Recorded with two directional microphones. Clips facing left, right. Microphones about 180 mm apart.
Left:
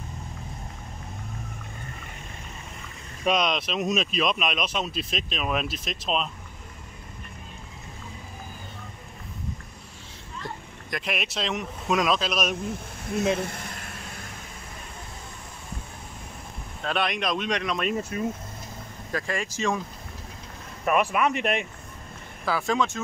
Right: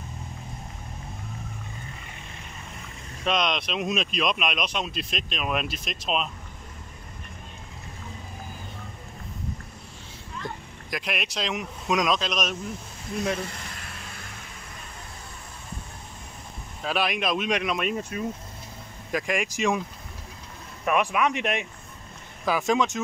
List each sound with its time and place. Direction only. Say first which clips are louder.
3.3 s speech: left 2 dB; 5° left (ahead or behind)
10.9 s speech: left 1 dB; centre (ahead or behind)
16.8 s speech: right 1 dB; 5° right (ahead or behind)
19.1 s speech: right 3 dB; 15° right (ahead or behind)
20.8 s speech: left 1 dB; centre (ahead or behind)
22.4 s speech: right 2 dB; 15° right (ahead or behind)